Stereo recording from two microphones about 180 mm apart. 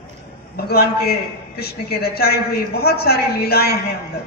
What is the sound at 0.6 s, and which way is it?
A man's voice, 60° left (ahead or behind).